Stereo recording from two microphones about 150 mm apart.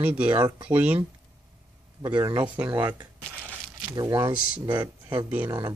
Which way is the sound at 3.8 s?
25° right (ahead or behind).